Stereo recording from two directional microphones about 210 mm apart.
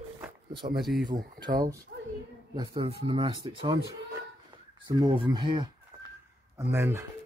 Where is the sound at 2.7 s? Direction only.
25° right (ahead or behind).